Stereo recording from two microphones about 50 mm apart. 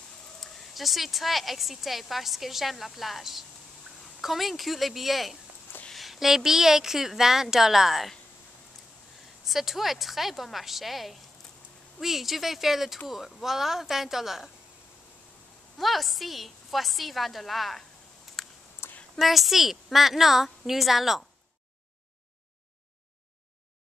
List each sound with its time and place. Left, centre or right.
0.4 s a woman's voice: centre
9.5 s speech: centre
15.8 s speech: centre
18.4 s a sound: centre
18.8 s a sound: left
19.1 s speech: centre